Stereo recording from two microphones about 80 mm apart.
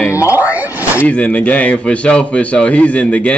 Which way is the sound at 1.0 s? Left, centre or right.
Centre.